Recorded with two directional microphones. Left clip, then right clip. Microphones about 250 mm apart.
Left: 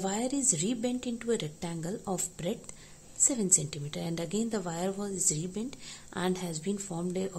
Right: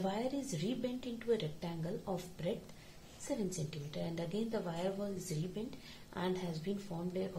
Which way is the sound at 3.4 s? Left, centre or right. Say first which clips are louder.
Left 12 dB; left.